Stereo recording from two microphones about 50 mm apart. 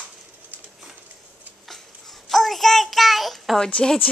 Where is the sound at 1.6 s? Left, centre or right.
Centre.